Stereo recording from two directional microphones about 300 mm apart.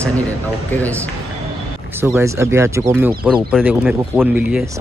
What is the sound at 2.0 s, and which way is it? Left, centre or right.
Speech, centre.